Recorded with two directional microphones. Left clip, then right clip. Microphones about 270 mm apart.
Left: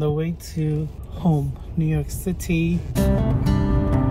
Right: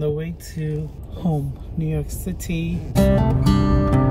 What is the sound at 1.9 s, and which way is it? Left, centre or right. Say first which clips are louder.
Music: even; centre.